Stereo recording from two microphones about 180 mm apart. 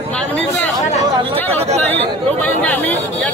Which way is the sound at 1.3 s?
10° left (ahead or behind).